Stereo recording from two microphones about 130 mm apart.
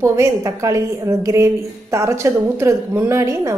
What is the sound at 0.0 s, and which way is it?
A woman's voice, 20° right (ahead or behind).